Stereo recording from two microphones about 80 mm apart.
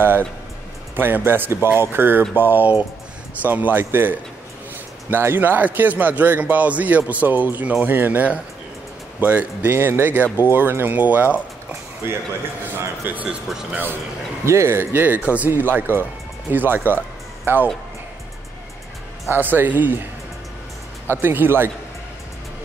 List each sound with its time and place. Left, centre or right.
0.9 s speech: right
12.0 s speech: right
13.5 s speech: centre
14.4 s speech: right
19.3 s speech: right
21.1 s speech: right